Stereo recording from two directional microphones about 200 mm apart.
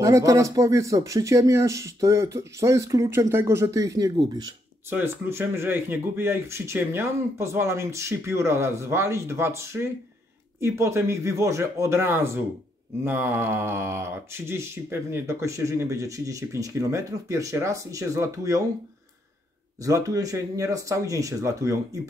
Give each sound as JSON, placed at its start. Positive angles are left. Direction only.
{"t": 0.0, "sound": "speech", "side_deg": -15}
{"t": 19.8, "sound": "speech", "side_deg": -15}